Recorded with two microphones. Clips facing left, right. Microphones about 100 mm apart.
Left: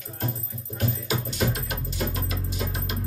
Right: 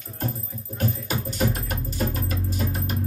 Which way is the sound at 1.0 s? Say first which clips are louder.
Even; 45° right (ahead or behind).